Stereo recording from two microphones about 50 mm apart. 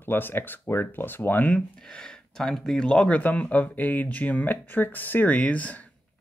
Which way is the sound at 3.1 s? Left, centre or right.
Left.